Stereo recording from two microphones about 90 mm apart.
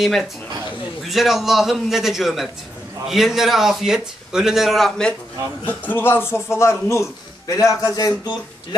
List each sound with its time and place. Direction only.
0.0 s a man's voice: centre (ahead or behind)
5.7 s a man's voice: 20° left (ahead or behind); by 8.1 s 40° left (ahead or behind)